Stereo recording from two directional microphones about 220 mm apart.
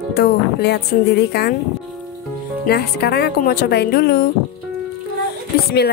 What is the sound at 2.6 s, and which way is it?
Speech, 50° left (ahead or behind).